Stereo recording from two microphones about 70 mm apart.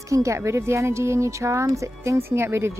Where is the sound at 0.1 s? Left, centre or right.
Right.